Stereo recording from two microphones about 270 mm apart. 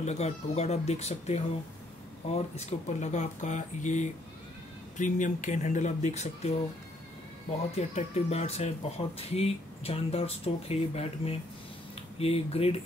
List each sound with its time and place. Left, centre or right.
0.0 s speech: left
7.7 s speech: left